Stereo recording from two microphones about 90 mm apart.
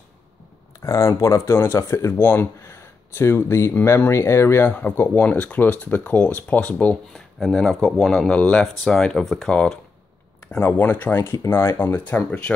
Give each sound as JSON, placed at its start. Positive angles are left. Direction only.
{"t": 0.7, "sound": "speech", "side_deg": 35}
{"t": 4.6, "sound": "speech", "side_deg": 15}
{"t": 7.2, "sound": "speech", "side_deg": 0}
{"t": 10.6, "sound": "speech", "side_deg": 20}